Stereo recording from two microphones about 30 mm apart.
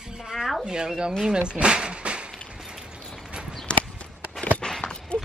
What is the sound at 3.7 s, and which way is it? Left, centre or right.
Walk, left.